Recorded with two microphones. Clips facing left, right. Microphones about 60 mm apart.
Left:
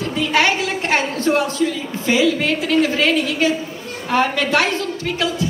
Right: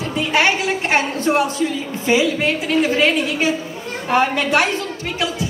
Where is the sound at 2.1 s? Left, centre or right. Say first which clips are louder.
Even; centre.